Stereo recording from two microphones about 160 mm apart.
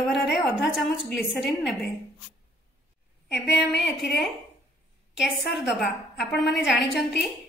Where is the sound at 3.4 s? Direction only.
90° left.